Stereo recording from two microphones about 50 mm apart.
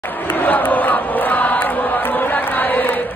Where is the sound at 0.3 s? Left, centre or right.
Left.